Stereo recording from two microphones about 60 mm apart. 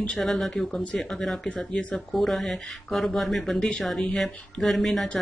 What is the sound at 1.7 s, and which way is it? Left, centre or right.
Speech, centre.